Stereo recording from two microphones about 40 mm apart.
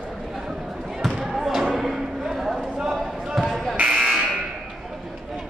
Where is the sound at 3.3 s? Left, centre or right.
Centre.